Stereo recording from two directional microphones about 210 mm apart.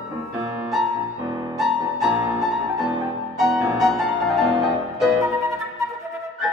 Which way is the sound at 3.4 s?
Centre (ahead or behind).